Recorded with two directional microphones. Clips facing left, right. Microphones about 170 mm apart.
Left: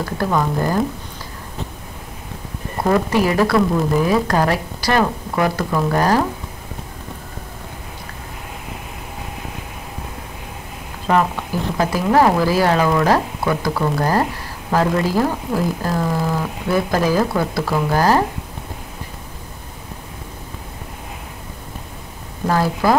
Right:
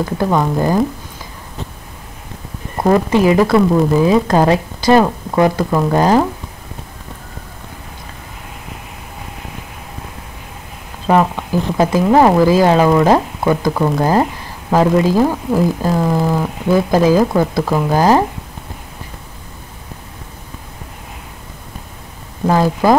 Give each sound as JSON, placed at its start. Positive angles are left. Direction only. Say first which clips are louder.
{"t": 0.0, "sound": "speech", "louder": "right 4 dB", "side_deg": -20}
{"t": 2.8, "sound": "speech", "louder": "right 4 dB", "side_deg": -20}
{"t": 11.7, "sound": "speech", "louder": "right 4 dB", "side_deg": -20}
{"t": 22.5, "sound": "speech", "louder": "right 4 dB", "side_deg": -20}